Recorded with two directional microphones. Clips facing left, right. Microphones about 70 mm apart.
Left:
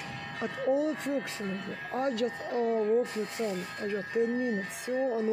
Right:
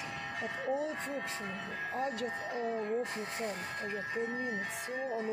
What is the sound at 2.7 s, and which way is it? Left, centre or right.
Speech, centre.